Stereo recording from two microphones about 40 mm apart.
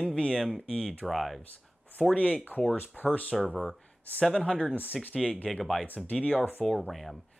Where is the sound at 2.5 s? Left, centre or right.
Left.